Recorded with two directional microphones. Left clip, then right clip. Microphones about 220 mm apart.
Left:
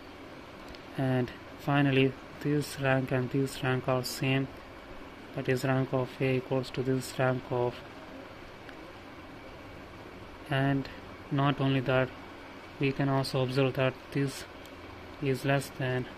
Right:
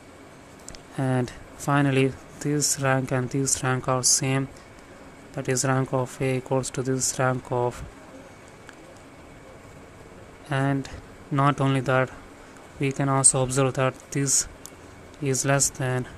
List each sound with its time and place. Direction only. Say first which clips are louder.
0.9 s speech: right 4 dB; 20° right (ahead or behind)
10.5 s speech: right 4 dB; 15° right (ahead or behind)